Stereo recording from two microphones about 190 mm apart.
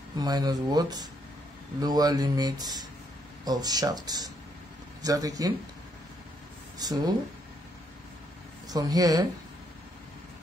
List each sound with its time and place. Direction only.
0.2 s speech: 20° right (ahead or behind)
6.8 s speech: 20° right (ahead or behind)
8.6 s speech: 20° right (ahead or behind)